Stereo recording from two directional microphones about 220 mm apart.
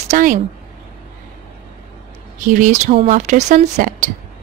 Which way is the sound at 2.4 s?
35° right (ahead or behind).